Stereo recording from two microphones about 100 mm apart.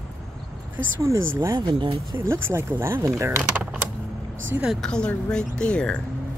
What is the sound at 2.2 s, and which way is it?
Speech, 25° right (ahead or behind).